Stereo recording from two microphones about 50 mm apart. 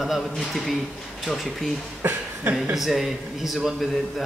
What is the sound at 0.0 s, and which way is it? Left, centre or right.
A man's voice, centre.